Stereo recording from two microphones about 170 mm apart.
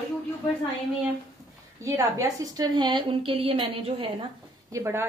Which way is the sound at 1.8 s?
20° right (ahead or behind).